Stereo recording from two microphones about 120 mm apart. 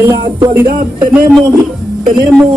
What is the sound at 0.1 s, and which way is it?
Music, 40° right (ahead or behind).